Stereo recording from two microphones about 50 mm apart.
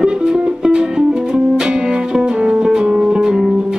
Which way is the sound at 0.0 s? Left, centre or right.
Centre.